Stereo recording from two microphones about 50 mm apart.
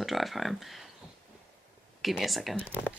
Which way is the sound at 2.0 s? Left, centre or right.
Centre.